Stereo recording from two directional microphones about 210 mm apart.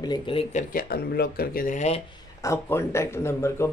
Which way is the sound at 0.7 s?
50° left (ahead or behind).